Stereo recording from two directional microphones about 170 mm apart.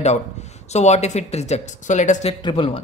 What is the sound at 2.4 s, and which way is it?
Speech, 30° left (ahead or behind).